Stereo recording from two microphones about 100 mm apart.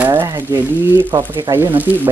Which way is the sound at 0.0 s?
25° right (ahead or behind).